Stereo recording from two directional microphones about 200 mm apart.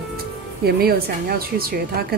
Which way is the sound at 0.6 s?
50° right (ahead or behind).